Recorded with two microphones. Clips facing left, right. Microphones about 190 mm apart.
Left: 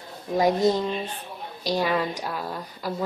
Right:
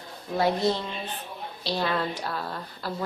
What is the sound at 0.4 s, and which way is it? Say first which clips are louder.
A woman's voice: left 4 dB; 15° left (ahead or behind).